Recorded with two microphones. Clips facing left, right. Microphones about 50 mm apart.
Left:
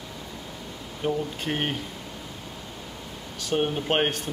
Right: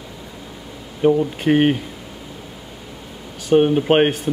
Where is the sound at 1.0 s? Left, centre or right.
Right.